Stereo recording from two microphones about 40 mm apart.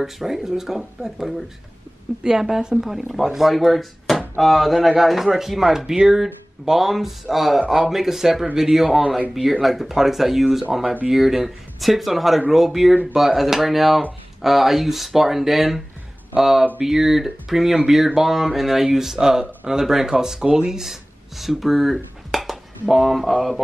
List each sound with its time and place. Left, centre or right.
0.0 s speech: centre